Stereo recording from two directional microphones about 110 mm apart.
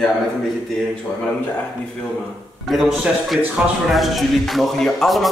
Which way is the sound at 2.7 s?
5° right (ahead or behind).